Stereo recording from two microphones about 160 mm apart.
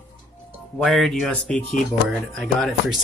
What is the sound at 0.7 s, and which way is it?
Speech, centre (ahead or behind).